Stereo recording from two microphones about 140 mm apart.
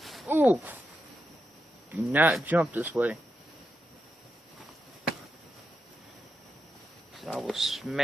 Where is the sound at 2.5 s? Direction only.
10° right (ahead or behind).